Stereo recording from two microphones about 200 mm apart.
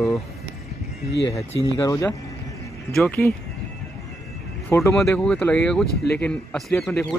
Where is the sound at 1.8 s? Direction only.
15° left (ahead or behind).